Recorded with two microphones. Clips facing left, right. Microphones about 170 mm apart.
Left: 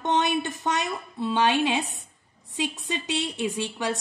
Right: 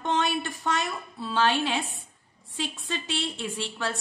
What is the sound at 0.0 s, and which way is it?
Speech, 20° left (ahead or behind).